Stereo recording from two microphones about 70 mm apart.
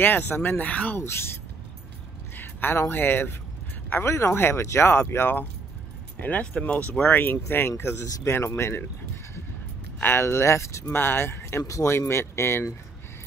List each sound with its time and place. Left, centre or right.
0.0 s speech: left
2.3 s a sound: left
2.9 s speech: left
6.2 s speech: centre; by 8.8 s left
9.9 s speech: left
11.6 s speech: left